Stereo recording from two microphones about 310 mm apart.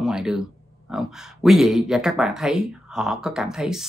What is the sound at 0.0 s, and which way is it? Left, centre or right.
Speech, centre.